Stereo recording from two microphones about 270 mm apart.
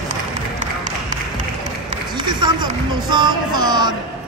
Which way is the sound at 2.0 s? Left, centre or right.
Centre.